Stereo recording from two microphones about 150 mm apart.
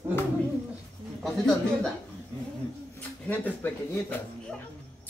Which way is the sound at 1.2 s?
5° left (ahead or behind).